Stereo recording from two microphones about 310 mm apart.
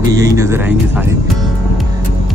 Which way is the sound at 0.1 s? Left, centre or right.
Centre.